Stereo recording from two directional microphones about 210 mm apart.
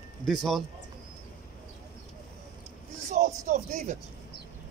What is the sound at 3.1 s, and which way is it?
Music, 35° right (ahead or behind).